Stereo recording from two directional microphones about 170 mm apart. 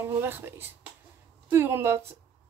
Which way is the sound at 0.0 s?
10° right (ahead or behind).